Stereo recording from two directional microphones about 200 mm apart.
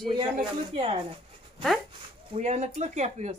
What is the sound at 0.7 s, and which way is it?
Speech, 30° right (ahead or behind).